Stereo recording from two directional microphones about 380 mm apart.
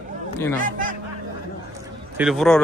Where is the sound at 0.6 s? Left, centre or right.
Right.